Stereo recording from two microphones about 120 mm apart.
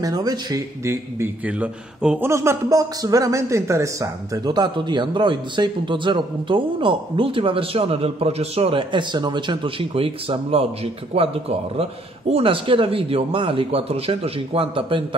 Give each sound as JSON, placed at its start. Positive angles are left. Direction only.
{"t": 0.0, "sound": "speech", "side_deg": -35}
{"t": 1.5, "sound": "speech", "side_deg": -10}
{"t": 2.2, "sound": "a man's voice", "side_deg": -25}